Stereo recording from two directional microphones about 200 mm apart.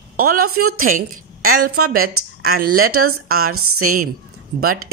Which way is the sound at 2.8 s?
90° right.